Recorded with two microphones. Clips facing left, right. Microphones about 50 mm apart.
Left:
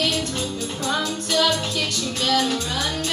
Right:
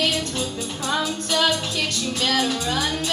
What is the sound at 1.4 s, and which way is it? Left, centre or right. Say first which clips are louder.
Music: left 1 dB; right.